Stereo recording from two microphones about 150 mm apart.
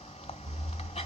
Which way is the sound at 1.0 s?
45° left (ahead or behind).